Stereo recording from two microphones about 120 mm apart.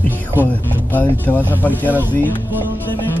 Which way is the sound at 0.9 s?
15° left (ahead or behind).